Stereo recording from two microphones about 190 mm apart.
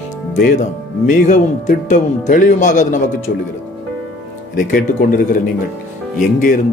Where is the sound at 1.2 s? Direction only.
40° left (ahead or behind).